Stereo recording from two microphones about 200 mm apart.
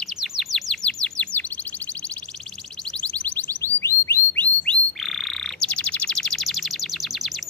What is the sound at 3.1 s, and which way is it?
Music, 5° left (ahead or behind).